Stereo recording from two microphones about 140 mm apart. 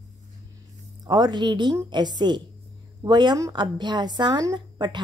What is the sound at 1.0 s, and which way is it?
A woman's voice, 30° right (ahead or behind).